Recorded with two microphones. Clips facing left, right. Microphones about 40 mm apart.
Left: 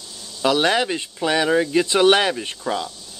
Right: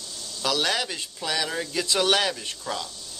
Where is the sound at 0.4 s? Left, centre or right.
Left.